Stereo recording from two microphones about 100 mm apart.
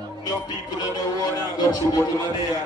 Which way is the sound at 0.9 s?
40° left (ahead or behind).